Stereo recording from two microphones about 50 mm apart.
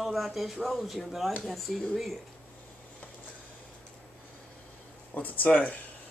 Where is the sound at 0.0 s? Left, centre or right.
Centre.